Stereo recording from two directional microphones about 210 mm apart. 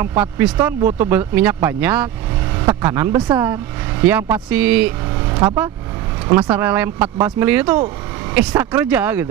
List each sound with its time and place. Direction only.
0.0 s speech: 10° right (ahead or behind)
5.3 s vehicle: 20° right (ahead or behind)
6.5 s speech: 10° right (ahead or behind)